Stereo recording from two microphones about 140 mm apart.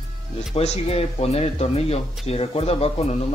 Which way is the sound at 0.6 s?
45° left (ahead or behind).